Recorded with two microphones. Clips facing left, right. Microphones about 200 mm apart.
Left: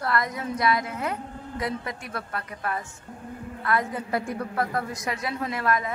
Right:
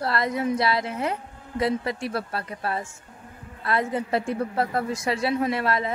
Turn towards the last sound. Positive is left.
turn(degrees=-30)  # may be behind; listen again after turning